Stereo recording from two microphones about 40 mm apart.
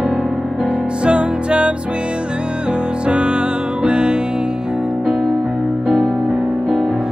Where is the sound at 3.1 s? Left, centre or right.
Right.